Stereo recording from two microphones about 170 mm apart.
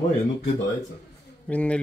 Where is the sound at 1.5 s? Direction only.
5° left (ahead or behind).